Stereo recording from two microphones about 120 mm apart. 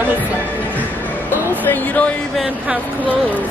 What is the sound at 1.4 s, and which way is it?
Music, 15° left (ahead or behind).